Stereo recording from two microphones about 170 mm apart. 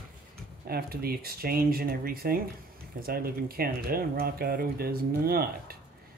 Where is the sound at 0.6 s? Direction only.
65° right (ahead or behind).